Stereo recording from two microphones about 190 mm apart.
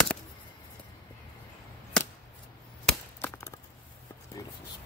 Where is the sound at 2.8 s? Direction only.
10° left (ahead or behind).